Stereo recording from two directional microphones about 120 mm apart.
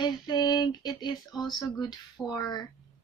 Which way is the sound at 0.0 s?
40° left (ahead or behind).